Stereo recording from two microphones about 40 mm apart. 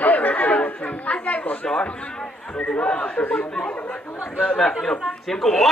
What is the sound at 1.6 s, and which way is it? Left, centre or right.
A man's voice, left.